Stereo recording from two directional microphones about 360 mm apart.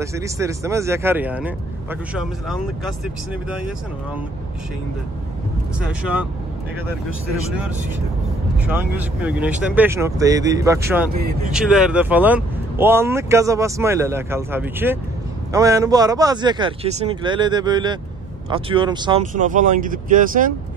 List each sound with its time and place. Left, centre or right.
0.0 s speech: centre
5.8 s speech: centre
8.6 s speech: centre
11.1 s speech: right
11.5 s speech: centre; by 20.5 s right